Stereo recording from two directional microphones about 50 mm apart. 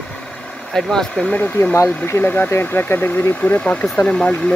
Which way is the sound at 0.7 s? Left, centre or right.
Centre.